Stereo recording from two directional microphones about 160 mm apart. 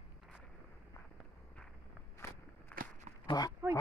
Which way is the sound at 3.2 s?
25° left (ahead or behind).